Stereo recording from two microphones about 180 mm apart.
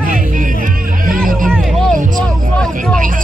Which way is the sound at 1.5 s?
Centre (ahead or behind).